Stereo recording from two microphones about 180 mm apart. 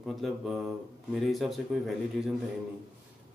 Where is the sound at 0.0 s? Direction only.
Centre (ahead or behind).